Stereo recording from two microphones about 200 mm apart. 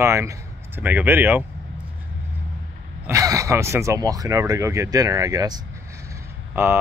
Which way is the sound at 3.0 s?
15° right (ahead or behind).